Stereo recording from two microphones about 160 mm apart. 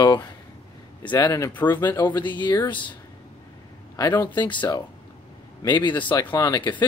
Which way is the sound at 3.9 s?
25° left (ahead or behind).